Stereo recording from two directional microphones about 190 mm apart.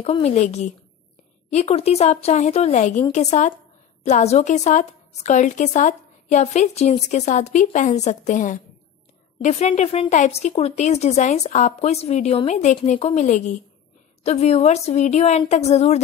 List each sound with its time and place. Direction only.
0.0 s a woman's voice: 35° left (ahead or behind)